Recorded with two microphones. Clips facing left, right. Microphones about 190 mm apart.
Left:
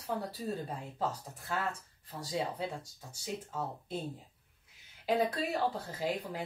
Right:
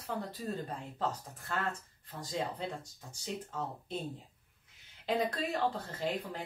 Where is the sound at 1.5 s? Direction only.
5° left (ahead or behind).